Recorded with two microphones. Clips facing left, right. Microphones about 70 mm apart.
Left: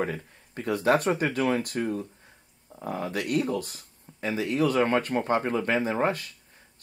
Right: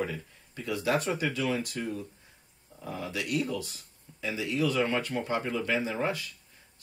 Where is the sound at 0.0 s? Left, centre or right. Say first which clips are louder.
Left 4 dB; left.